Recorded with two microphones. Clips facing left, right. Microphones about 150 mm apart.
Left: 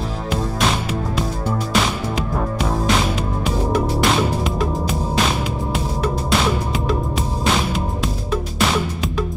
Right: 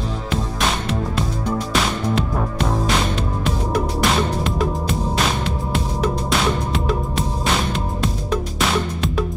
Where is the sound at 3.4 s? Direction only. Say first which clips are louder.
Left 3 dB; 5° left (ahead or behind).